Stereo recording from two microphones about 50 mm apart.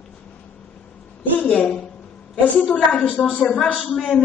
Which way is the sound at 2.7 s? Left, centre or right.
Centre.